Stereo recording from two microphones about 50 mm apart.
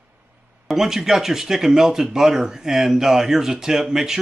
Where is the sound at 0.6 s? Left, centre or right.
Centre.